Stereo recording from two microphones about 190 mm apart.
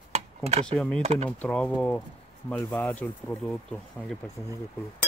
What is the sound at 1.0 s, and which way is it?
Speech, 35° right (ahead or behind).